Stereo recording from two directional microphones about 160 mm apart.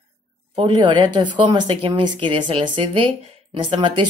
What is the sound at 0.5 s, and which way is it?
Speech, 30° right (ahead or behind).